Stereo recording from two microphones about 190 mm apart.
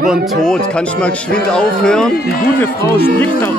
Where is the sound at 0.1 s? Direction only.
Centre (ahead or behind).